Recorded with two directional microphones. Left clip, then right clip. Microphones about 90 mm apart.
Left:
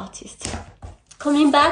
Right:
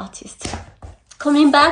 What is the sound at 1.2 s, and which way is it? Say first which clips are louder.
Speech: right 3 dB; 20° left (ahead or behind).